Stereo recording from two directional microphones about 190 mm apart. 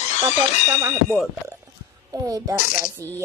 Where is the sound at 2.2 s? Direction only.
20° right (ahead or behind).